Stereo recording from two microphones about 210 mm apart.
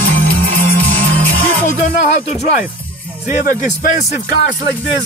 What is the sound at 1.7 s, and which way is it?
Speech, 35° left (ahead or behind).